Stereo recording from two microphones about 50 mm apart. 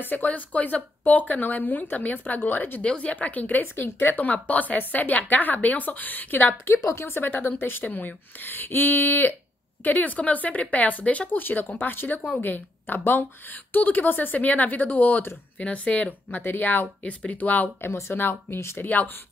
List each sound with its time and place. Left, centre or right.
0.1 s speech: left
2.8 s speech: left
4.3 s speech: left
6.6 s a woman's voice: left
7.2 s speech: left
9.8 s speech: left
11.2 s speech: left
18.8 s speech: left